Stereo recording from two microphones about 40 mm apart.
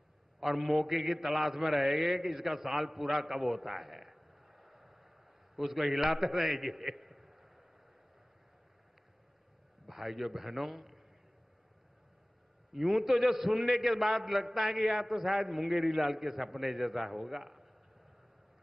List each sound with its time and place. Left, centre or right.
0.4 s mantra: centre
5.6 s a man's voice: centre
9.8 s a man's voice: centre
12.7 s a man's voice: centre